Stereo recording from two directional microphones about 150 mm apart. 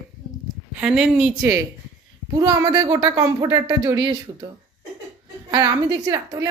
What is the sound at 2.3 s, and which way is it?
A woman's voice, 20° right (ahead or behind).